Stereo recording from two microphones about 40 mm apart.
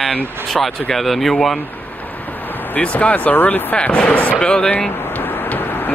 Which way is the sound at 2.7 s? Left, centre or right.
Left.